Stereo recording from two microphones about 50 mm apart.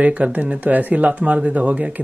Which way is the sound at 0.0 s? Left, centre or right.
Right.